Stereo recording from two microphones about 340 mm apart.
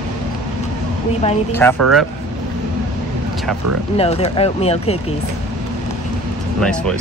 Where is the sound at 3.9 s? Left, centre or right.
Centre.